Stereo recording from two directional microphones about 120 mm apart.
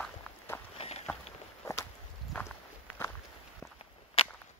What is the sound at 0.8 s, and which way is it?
Run, 60° left (ahead or behind).